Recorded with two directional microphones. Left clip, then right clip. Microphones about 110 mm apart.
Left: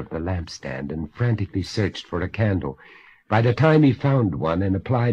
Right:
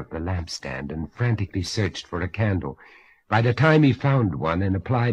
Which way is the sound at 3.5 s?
5° left (ahead or behind).